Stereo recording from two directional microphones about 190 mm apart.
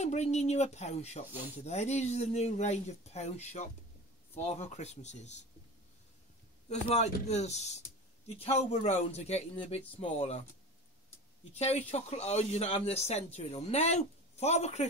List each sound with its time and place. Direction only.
0.0 s speech: 35° left (ahead or behind)
6.7 s speech: 35° left (ahead or behind)
11.5 s speech: 35° left (ahead or behind)